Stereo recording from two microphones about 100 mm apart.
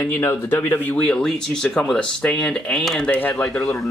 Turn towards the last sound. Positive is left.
turn(degrees=10)  # may be behind; listen again after turning